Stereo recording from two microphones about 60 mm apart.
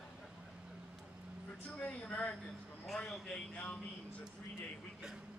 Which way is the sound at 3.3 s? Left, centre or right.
Centre.